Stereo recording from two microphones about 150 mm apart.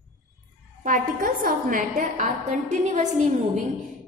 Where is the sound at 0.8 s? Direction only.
65° right (ahead or behind).